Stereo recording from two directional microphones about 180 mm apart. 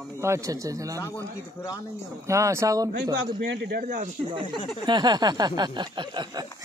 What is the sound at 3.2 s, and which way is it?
Speech, 80° right.